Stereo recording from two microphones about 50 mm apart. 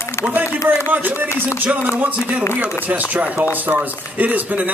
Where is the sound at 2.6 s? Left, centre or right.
Right.